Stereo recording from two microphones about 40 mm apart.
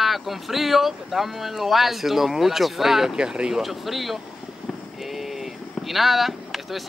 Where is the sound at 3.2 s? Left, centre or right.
Centre.